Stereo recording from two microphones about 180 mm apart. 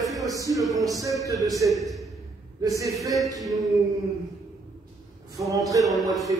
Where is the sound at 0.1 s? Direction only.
20° right (ahead or behind).